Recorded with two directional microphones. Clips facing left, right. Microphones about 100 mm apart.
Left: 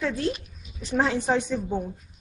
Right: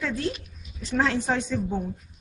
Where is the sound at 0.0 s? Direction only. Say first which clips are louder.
Left 2 dB; 5° left (ahead or behind).